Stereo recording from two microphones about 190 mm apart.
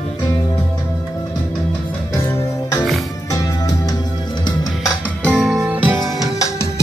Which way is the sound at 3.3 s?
20° left (ahead or behind).